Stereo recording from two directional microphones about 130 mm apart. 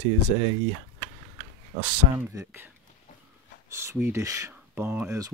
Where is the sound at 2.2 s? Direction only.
15° right (ahead or behind).